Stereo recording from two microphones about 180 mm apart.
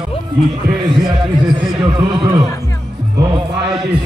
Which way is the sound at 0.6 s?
65° right (ahead or behind).